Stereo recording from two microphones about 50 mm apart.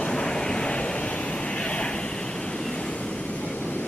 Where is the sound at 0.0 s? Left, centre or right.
Centre.